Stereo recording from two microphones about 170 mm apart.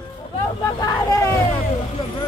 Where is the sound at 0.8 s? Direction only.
20° left (ahead or behind).